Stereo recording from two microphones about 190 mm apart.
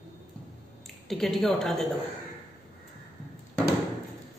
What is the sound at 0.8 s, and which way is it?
A woman's voice, centre (ahead or behind).